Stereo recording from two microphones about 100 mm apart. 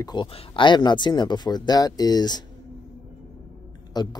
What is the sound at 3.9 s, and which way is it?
Speech, 45° left (ahead or behind).